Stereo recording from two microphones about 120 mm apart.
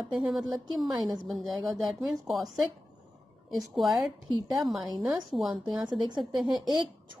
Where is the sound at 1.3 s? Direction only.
Centre (ahead or behind).